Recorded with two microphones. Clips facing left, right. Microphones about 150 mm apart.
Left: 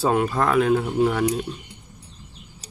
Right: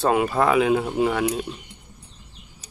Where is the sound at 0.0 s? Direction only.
5° right (ahead or behind).